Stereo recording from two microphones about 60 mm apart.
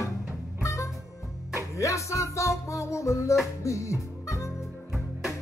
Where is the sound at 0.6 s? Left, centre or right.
Left.